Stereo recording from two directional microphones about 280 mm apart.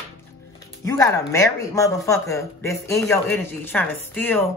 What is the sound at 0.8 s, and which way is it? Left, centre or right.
A man's voice, centre.